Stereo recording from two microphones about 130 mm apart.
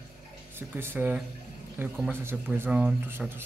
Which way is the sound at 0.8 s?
15° right (ahead or behind).